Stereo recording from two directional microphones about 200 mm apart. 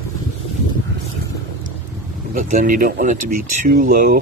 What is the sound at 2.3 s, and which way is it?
Speech, 45° right (ahead or behind).